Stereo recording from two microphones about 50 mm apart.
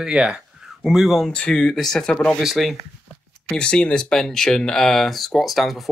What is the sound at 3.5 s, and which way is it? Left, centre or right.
Speech, centre.